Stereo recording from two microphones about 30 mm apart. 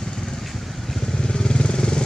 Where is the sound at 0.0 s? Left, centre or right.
Centre.